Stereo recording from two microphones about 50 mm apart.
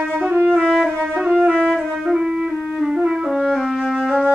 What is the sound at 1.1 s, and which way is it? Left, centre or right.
Music, right.